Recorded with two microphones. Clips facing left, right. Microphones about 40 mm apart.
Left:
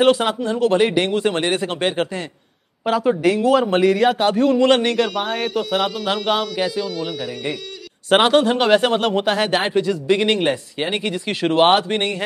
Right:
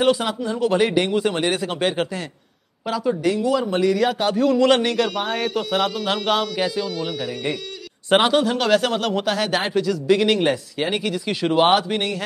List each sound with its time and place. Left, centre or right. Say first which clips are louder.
0.0 s speech: left 3 dB; left
0.7 s speech: left 2 dB; centre
2.8 s a man's voice: left 4 dB; left
4.9 s speech: left 2 dB; centre
8.2 s speech: left 5 dB; left